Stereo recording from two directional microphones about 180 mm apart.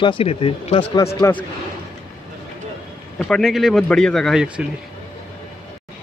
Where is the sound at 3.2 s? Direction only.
Centre (ahead or behind).